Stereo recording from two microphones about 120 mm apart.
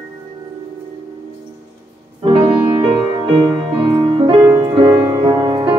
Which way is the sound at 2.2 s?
50° right (ahead or behind).